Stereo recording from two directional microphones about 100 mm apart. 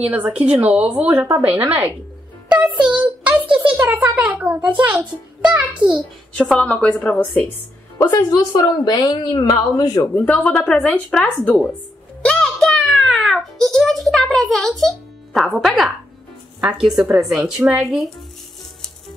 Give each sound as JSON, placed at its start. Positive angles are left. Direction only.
{"t": 0.0, "sound": "a child's voice", "side_deg": -15}
{"t": 6.3, "sound": "a woman's voice", "side_deg": 5}
{"t": 8.1, "sound": "a woman's voice", "side_deg": 40}
{"t": 10.2, "sound": "a woman's voice", "side_deg": 15}
{"t": 12.2, "sound": "a sound", "side_deg": 10}
{"t": 16.6, "sound": "a child's voice", "side_deg": -10}